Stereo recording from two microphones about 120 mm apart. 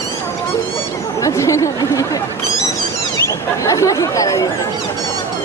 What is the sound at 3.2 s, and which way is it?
Speech, 25° left (ahead or behind).